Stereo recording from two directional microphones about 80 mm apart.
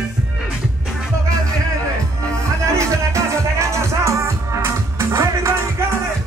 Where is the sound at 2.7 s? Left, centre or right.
Right.